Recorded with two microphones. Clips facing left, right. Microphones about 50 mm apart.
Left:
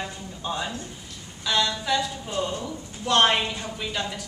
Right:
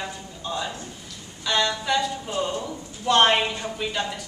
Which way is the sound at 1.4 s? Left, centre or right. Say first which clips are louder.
Right 1 dB; centre.